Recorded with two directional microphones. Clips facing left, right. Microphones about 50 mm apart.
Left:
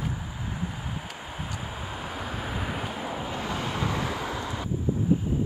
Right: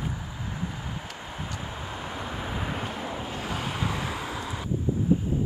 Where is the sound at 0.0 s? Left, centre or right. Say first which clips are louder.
Left 1 dB; centre.